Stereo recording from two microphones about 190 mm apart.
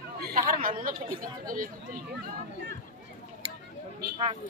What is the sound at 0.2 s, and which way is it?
Speech, 50° right (ahead or behind).